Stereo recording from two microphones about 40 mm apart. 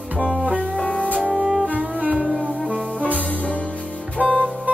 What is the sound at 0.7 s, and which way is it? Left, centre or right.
Music, left.